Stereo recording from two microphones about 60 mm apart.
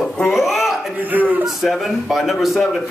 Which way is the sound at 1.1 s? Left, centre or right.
Right.